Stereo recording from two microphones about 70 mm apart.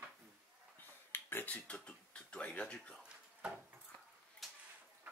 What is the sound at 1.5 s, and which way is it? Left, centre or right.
Speech, centre.